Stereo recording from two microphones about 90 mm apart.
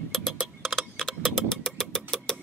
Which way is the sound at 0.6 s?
Centre (ahead or behind).